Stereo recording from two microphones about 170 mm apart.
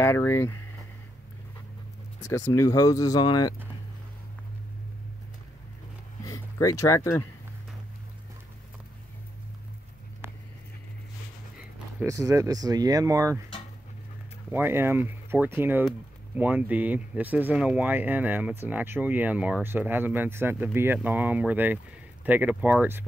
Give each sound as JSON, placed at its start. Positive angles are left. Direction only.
{"t": 0.0, "sound": "speech", "side_deg": 15}
{"t": 2.2, "sound": "speech", "side_deg": 20}
{"t": 6.2, "sound": "speech", "side_deg": 20}
{"t": 12.0, "sound": "speech", "side_deg": -20}
{"t": 14.5, "sound": "speech", "side_deg": -15}